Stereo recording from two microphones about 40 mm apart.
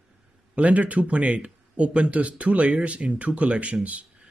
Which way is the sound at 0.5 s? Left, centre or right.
Right.